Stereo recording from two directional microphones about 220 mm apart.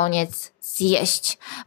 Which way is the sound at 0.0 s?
35° left (ahead or behind).